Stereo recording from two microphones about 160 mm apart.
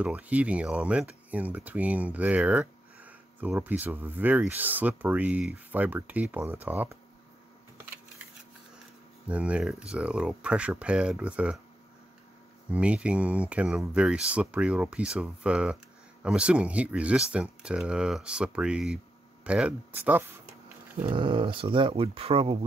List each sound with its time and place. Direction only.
0.0 s speech: 10° right (ahead or behind)
9.3 s speech: 5° right (ahead or behind)
12.6 s speech: 5° right (ahead or behind)
19.4 s a sound: 5° right (ahead or behind)
21.1 s speech: 30° right (ahead or behind)